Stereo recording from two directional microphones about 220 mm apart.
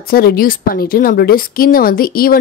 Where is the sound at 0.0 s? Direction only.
45° left (ahead or behind).